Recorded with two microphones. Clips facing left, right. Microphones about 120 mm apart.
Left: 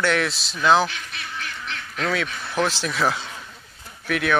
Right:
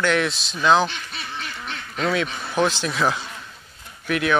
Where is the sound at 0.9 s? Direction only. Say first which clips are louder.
Right 1 dB; 30° right (ahead or behind).